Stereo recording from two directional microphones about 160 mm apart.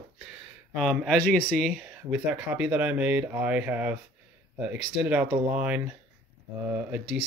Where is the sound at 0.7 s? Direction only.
Centre (ahead or behind).